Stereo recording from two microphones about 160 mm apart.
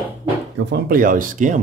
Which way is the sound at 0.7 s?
60° right (ahead or behind).